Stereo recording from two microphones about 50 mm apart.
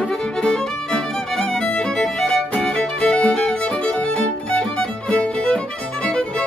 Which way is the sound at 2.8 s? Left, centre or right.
Left.